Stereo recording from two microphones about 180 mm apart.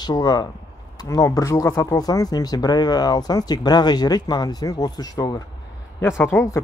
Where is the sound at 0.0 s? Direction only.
20° left (ahead or behind).